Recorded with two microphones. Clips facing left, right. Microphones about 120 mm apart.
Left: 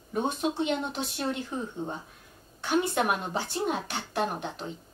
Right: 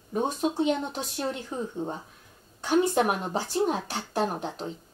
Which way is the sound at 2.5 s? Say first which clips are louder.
Right 3 dB; 40° right (ahead or behind).